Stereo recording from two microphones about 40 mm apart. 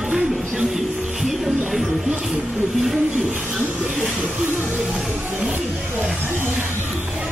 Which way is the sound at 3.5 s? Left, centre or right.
Centre.